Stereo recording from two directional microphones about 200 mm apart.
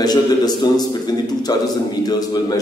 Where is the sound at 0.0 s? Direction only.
20° left (ahead or behind).